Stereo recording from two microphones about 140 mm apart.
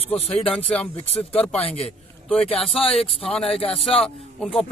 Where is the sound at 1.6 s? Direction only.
45° left (ahead or behind).